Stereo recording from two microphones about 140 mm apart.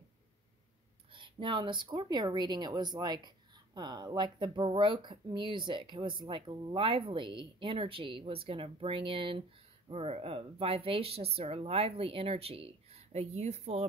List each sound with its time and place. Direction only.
1.1 s a woman's voice: 35° right (ahead or behind); by 13.8 s 50° right (ahead or behind)